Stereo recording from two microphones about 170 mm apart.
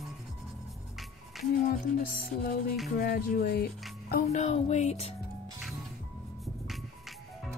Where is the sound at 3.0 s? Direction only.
60° left (ahead or behind).